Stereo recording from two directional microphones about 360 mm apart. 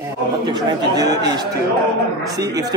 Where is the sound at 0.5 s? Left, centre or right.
Centre.